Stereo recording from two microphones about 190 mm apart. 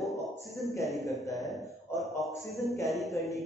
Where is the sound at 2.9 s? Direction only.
Centre (ahead or behind).